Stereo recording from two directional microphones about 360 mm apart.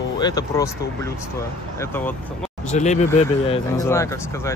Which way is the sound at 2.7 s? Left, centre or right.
Centre.